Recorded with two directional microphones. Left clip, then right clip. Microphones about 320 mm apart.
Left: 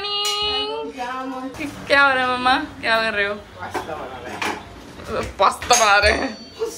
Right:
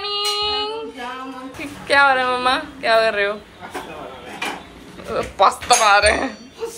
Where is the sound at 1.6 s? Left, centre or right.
Centre.